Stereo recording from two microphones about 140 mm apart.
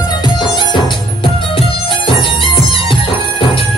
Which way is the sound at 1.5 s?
35° left (ahead or behind).